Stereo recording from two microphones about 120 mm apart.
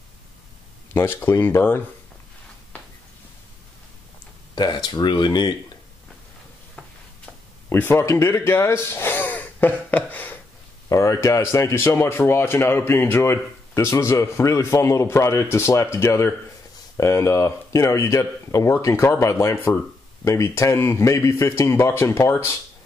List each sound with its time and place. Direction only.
0.9 s speech: 20° left (ahead or behind)
4.6 s speech: 35° left (ahead or behind)
7.7 s speech: 20° left (ahead or behind)
10.1 s a sound: 15° left (ahead or behind)
10.9 s speech: 25° left (ahead or behind)